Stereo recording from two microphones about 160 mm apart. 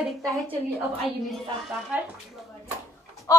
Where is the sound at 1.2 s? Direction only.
5° right (ahead or behind).